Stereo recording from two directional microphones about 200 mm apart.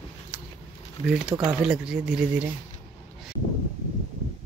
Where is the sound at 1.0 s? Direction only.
5° right (ahead or behind).